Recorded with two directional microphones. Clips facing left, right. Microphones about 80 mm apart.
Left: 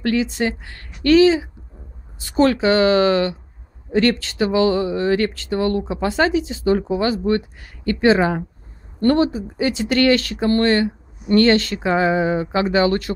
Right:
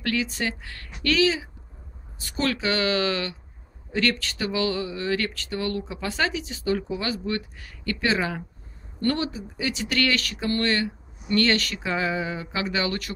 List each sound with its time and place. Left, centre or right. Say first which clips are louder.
0.0 s speech: left 7 dB; left